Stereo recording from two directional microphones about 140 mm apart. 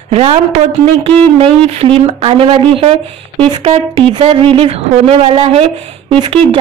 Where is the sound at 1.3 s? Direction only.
45° right (ahead or behind).